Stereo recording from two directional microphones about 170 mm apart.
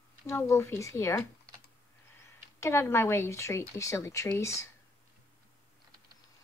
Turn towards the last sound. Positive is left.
turn(degrees=20)  # may be behind; listen again after turning